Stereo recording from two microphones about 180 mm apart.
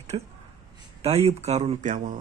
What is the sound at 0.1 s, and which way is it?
Speech, 30° right (ahead or behind).